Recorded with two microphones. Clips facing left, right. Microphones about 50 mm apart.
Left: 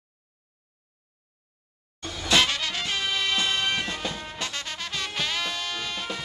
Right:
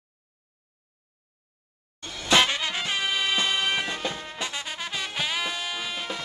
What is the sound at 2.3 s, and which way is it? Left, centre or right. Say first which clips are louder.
Music: right 1 dB; centre.